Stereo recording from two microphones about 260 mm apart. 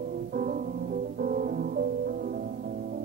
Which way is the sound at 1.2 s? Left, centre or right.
Right.